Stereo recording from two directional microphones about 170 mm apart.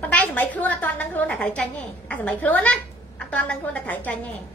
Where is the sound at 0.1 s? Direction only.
10° left (ahead or behind).